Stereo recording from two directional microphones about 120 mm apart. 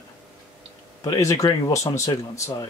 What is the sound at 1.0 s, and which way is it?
Speech, 30° left (ahead or behind).